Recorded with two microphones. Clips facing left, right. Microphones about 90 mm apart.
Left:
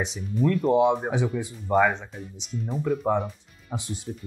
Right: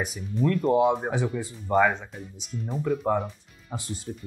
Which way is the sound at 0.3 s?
Centre (ahead or behind).